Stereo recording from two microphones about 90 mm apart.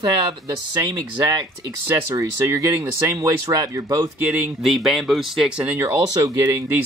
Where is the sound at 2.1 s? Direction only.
35° right (ahead or behind).